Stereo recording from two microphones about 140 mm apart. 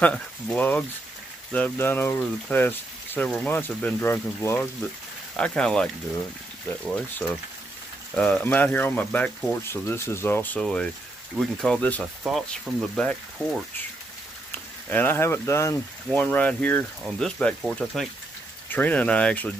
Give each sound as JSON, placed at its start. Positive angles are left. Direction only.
{"t": 0.0, "sound": "speech", "side_deg": 10}
{"t": 5.3, "sound": "speech", "side_deg": 5}
{"t": 6.9, "sound": "speech", "side_deg": 15}
{"t": 12.2, "sound": "speech", "side_deg": -5}
{"t": 16.1, "sound": "speech", "side_deg": 10}